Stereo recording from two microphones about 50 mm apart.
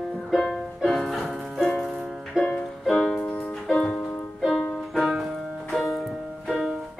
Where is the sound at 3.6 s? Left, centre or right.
Centre.